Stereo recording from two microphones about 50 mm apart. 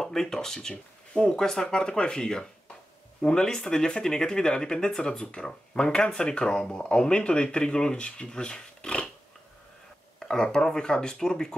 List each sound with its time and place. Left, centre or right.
0.0 s speech: centre
10.1 s speech: centre